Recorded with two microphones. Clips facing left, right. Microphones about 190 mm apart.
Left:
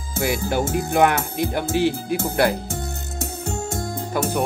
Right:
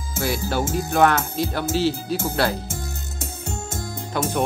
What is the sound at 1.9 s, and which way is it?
Speech, 60° left (ahead or behind).